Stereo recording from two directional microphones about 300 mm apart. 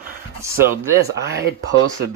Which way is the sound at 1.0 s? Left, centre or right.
Right.